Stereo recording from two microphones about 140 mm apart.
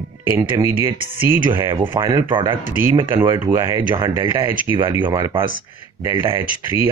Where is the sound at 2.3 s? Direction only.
35° right (ahead or behind).